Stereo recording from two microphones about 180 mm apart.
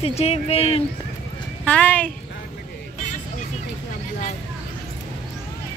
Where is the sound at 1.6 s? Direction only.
10° left (ahead or behind).